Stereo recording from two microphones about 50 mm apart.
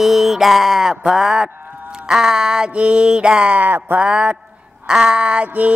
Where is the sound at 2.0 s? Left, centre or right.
Centre.